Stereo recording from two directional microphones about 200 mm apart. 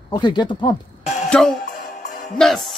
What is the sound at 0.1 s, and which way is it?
Speech, 20° left (ahead or behind).